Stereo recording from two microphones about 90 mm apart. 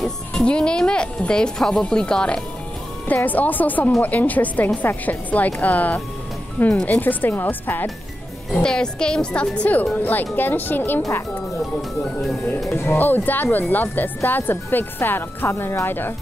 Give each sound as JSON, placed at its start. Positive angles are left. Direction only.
{"t": 0.0, "sound": "speech", "side_deg": 10}
{"t": 8.5, "sound": "speech", "side_deg": 10}
{"t": 12.7, "sound": "speech", "side_deg": 25}